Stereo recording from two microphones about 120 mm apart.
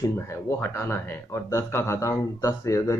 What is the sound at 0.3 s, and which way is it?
Speech, 20° left (ahead or behind).